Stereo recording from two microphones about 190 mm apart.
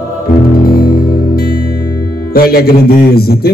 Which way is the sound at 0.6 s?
50° left (ahead or behind).